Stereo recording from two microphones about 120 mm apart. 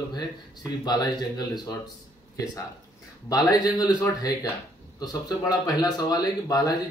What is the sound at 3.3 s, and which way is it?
Speech, 30° left (ahead or behind).